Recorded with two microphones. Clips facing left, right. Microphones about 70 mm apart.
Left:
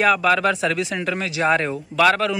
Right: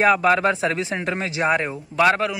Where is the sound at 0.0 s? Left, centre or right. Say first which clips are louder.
Right 1 dB; right.